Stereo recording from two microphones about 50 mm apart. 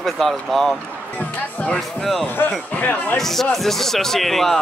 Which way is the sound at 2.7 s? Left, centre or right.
Left.